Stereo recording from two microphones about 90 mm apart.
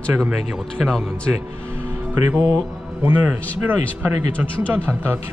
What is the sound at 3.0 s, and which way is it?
Speech, 20° right (ahead or behind).